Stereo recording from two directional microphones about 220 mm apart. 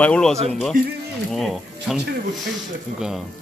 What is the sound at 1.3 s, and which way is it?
Speech, centre (ahead or behind).